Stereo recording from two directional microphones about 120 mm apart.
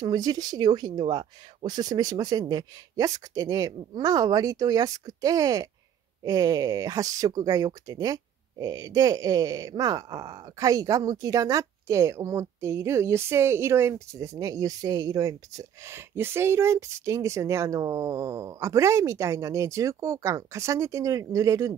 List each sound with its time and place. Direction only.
0.0 s speech: 35° right (ahead or behind)